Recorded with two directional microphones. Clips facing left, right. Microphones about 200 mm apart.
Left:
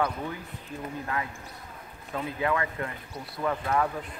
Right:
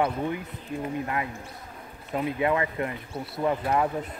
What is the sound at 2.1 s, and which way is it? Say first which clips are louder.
Speech: right 4 dB; 20° right (ahead or behind).